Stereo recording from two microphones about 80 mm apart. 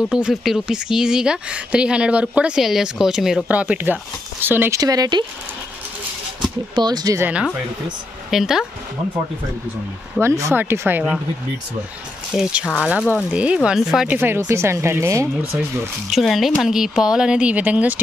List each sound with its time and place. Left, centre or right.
0.1 s speech: centre
3.4 s speech: centre
4.7 s speech: right
6.7 s speech: right
8.3 s speech: centre
10.2 s speech: right
10.5 s speech: right
12.3 s speech: centre
14.0 s speech: right
16.1 s speech: centre